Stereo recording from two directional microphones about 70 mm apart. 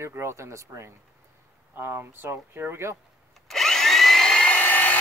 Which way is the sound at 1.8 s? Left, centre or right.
Right.